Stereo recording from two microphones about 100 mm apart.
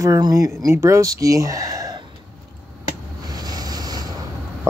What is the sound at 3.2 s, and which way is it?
Wind noise, 40° right (ahead or behind).